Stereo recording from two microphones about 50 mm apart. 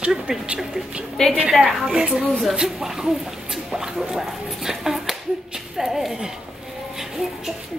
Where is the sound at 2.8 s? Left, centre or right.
Centre.